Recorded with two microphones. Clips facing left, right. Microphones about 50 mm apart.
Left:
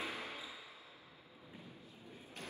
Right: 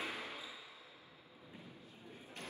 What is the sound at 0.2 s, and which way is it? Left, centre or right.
Basketball bounce, left.